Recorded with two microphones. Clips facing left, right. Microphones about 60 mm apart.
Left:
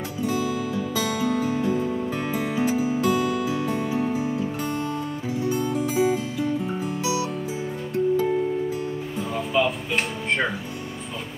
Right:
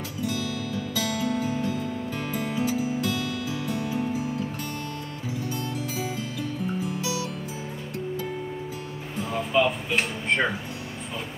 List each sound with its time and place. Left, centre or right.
0.3 s music: left
9.3 s music: centre